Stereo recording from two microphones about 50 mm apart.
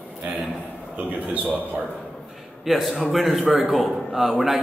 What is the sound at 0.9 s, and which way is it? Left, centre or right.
Speech, right.